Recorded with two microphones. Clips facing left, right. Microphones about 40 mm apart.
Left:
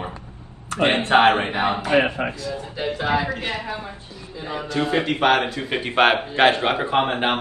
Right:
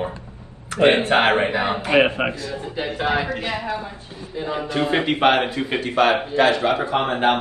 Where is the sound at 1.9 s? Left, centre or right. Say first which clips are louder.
Right 5 dB; right.